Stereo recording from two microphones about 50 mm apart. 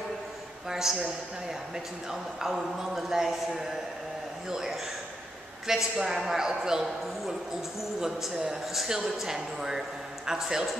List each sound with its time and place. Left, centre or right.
0.7 s speech: centre
2.0 s speech: centre